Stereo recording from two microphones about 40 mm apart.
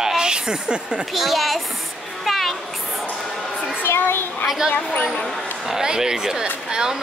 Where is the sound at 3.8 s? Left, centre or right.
Left.